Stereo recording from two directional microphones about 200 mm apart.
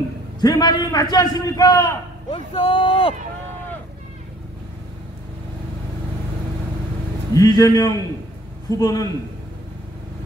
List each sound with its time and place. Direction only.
0.4 s a man's voice: 20° left (ahead or behind)
7.3 s a man's voice: 20° left (ahead or behind)